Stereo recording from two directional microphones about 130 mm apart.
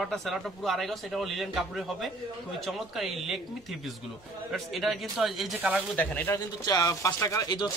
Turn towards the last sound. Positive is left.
turn(degrees=30)  # may be behind; listen again after turning